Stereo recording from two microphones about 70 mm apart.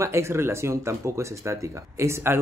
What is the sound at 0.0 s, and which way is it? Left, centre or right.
Speech, right.